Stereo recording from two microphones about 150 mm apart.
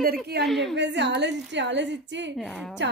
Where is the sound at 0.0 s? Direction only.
90° right.